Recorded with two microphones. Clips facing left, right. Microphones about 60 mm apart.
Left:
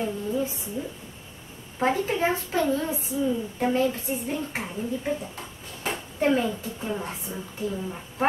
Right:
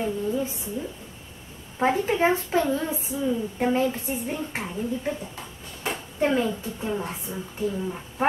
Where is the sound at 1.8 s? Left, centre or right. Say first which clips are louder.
Right 2 dB; centre.